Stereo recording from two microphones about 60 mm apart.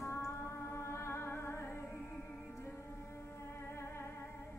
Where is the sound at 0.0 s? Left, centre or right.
Left.